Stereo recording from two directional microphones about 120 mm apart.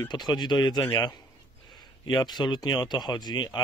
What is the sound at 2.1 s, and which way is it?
Speech, 35° left (ahead or behind).